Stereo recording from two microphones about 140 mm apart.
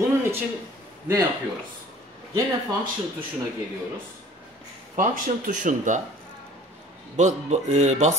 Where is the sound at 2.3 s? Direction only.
35° right (ahead or behind).